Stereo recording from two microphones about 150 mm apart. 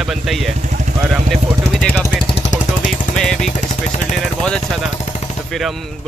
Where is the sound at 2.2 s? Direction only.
45° left (ahead or behind).